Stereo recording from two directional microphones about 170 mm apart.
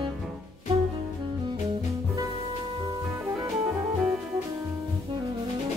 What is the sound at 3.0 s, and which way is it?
Music, 15° right (ahead or behind).